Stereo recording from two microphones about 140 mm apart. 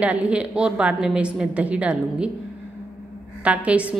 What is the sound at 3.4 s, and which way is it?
Speech, 10° right (ahead or behind).